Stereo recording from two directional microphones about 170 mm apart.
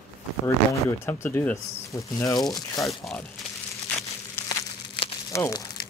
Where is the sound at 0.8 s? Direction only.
15° left (ahead or behind).